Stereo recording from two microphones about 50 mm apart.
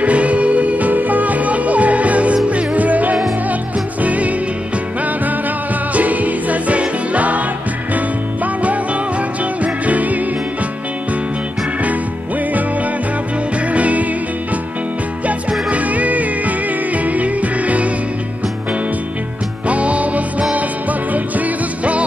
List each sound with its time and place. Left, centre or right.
0.0 s music: right
5.9 s music: right
8.6 s music: right
13.7 s music: right
15.7 s music: right
19.7 s music: right